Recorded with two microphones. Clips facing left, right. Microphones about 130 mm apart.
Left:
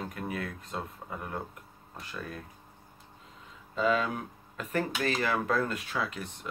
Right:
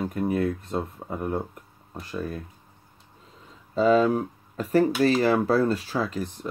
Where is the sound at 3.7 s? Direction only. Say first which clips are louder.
Right 9 dB; 35° right (ahead or behind).